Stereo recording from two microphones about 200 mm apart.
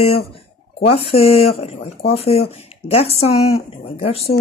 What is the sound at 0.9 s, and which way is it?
A woman's voice, 30° left (ahead or behind).